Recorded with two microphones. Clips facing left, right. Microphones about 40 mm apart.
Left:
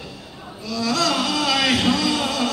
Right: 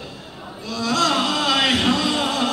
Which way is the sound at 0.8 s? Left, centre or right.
Right.